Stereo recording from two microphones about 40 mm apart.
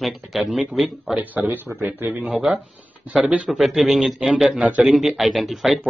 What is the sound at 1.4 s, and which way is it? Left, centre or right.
Speech, right.